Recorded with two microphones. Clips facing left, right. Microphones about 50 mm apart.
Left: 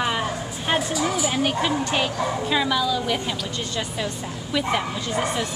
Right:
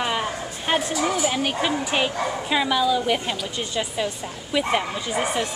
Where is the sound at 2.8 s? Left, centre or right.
Right.